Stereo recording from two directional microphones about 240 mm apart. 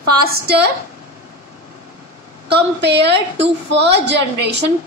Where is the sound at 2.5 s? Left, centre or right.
Right.